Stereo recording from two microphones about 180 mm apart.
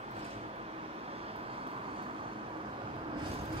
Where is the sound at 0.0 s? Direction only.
35° right (ahead or behind).